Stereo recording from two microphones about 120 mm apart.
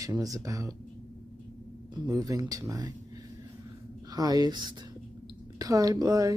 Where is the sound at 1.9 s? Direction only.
35° right (ahead or behind).